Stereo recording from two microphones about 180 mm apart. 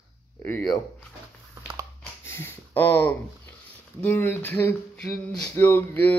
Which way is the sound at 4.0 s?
10° left (ahead or behind).